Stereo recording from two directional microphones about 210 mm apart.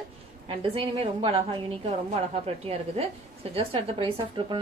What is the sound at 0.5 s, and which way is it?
A woman's voice, 25° right (ahead or behind).